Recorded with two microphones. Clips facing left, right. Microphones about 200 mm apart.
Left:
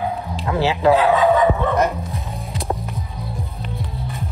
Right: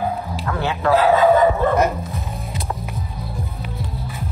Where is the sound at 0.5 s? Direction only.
25° left (ahead or behind).